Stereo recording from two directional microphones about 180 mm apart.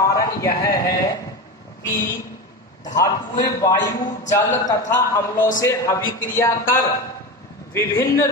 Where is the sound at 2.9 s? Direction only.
20° left (ahead or behind).